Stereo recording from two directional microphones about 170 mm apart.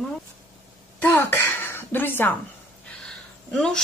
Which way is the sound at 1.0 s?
15° left (ahead or behind).